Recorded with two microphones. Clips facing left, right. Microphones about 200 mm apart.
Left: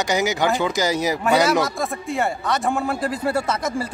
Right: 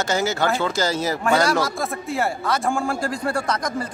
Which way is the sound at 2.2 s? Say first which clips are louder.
Left 1 dB; centre (ahead or behind).